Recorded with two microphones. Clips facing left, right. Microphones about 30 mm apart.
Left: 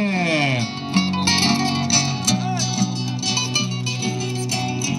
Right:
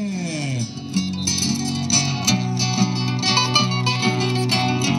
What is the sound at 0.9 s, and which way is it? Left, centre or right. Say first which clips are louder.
Music: left 5 dB; left.